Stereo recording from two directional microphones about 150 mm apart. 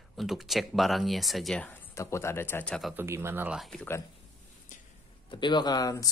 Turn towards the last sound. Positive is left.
turn(degrees=25)  # may be behind; listen again after turning